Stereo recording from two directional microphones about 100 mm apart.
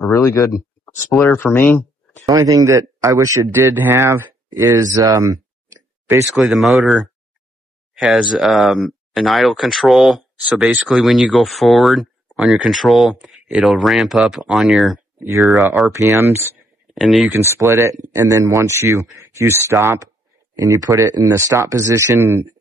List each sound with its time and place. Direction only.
0.1 s speech: 30° left (ahead or behind)
2.2 s speech: 35° right (ahead or behind)
3.5 s speech: 20° right (ahead or behind)
6.3 s speech: centre (ahead or behind)
15.1 s speech: 30° right (ahead or behind)
15.4 s speech: centre (ahead or behind)
15.9 s speech: 30° right (ahead or behind)
17.0 s speech: centre (ahead or behind)
17.3 s speech: 25° right (ahead or behind)